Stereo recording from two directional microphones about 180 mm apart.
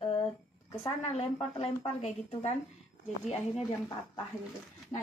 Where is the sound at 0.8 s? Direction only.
30° left (ahead or behind).